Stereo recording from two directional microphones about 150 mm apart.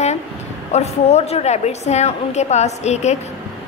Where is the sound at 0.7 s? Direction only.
45° left (ahead or behind).